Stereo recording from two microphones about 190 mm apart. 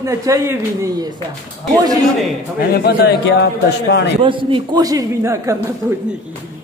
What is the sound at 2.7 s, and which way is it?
Speech, 55° left (ahead or behind).